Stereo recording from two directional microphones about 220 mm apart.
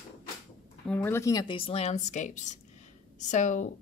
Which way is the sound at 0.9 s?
10° left (ahead or behind).